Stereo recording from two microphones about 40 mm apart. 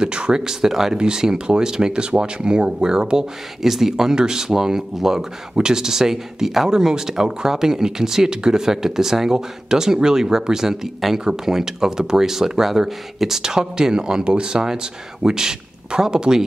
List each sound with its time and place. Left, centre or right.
0.0 s speech: right
3.6 s speech: centre